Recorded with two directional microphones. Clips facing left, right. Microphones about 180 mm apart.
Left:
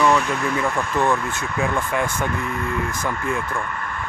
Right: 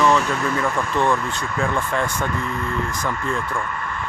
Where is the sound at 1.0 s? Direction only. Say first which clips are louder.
Even; 10° left (ahead or behind).